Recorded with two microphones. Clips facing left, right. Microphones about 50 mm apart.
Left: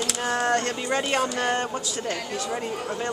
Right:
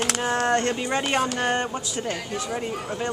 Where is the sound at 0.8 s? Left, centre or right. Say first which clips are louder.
Right 1 dB; centre.